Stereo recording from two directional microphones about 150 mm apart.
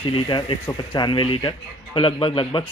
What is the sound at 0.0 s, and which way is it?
Speech, 30° left (ahead or behind).